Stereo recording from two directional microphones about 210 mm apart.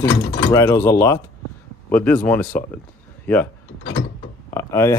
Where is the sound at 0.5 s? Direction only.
15° left (ahead or behind).